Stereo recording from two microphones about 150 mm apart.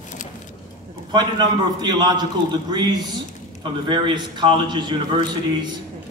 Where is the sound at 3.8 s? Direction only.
30° right (ahead or behind).